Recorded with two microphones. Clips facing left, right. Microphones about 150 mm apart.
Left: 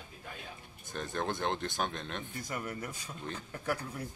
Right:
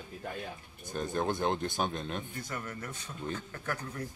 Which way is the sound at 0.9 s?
5° right (ahead or behind).